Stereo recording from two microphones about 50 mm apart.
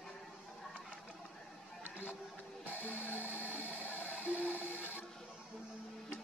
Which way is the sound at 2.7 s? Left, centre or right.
Left.